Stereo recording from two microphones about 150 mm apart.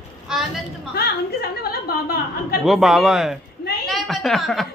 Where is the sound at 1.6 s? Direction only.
90° left.